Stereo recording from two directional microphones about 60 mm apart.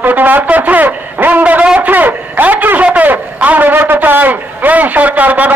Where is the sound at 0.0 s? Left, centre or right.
Right.